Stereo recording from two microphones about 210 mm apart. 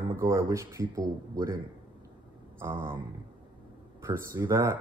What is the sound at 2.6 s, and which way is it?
Speech, 10° right (ahead or behind).